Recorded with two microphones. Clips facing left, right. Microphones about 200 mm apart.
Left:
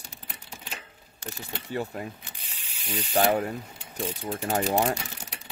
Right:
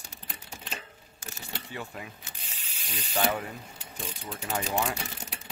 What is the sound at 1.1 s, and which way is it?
Camera, 35° left (ahead or behind).